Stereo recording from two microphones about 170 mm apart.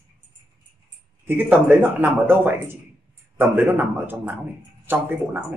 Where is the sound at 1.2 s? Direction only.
10° right (ahead or behind).